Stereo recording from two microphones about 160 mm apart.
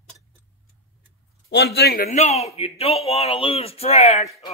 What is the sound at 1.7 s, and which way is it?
Speech, 75° left (ahead or behind).